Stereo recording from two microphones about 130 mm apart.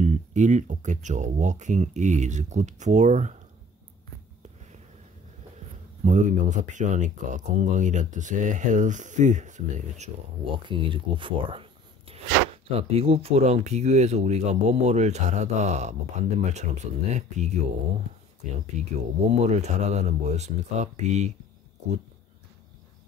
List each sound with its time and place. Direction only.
0.0 s speech: 65° right (ahead or behind)
6.0 s speech: 65° right (ahead or behind)
10.4 s speech: 40° right (ahead or behind)
12.6 s speech: 50° right (ahead or behind)
18.8 s speech: 65° right (ahead or behind)